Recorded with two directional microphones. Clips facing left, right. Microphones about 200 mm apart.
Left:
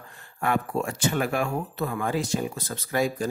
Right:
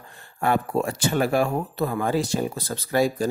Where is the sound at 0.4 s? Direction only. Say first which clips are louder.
Right 3 dB; 35° right (ahead or behind).